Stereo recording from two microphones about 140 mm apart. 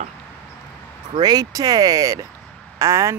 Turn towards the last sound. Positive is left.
turn(degrees=-20)  # may be behind; listen again after turning